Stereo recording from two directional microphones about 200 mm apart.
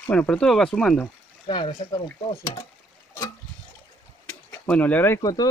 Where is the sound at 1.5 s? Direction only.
25° left (ahead or behind).